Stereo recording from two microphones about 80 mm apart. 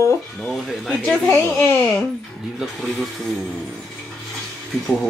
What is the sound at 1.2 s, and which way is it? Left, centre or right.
Speech, left.